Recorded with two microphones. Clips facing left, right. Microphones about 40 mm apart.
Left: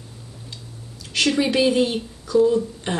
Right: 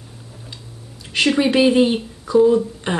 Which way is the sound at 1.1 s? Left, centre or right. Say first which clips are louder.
Right 3 dB; right.